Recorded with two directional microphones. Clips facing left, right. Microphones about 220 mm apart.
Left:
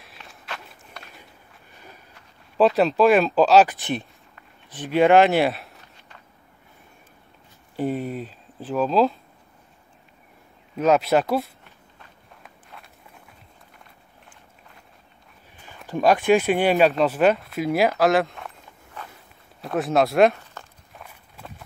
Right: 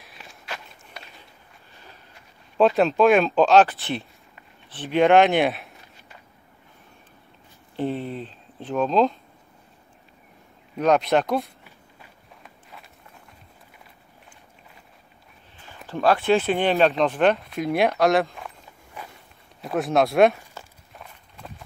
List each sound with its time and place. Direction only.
0.0 s walk: centre (ahead or behind)
2.5 s speech: centre (ahead or behind)
3.6 s speech: 15° left (ahead or behind)
4.7 s speech: 5° left (ahead or behind)
7.7 s speech: 15° left (ahead or behind)
10.8 s speech: 5° left (ahead or behind)
15.9 s speech: 15° left (ahead or behind)
19.1 s a sound: centre (ahead or behind)
20.9 s walk: 5° left (ahead or behind)